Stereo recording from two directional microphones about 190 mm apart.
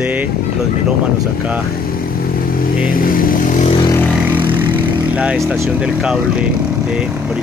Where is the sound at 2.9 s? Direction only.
50° left (ahead or behind).